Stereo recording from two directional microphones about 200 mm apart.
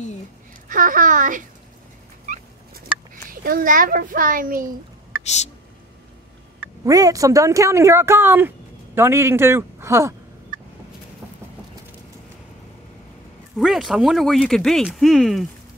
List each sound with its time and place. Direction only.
0.7 s a child's voice: 45° right (ahead or behind)
2.3 s fowl: 40° right (ahead or behind)
3.3 s a child's voice: 45° right (ahead or behind)
5.2 s speech: 35° left (ahead or behind)
6.6 s speech: 15° right (ahead or behind)
13.6 s speech: centre (ahead or behind)